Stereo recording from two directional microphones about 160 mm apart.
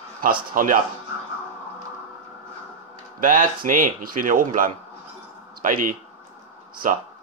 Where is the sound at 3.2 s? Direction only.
60° right (ahead or behind).